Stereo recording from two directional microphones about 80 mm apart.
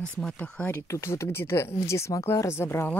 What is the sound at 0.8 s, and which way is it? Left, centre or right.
Speech, left.